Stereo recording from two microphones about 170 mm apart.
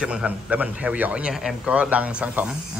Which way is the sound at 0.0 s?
5° right (ahead or behind).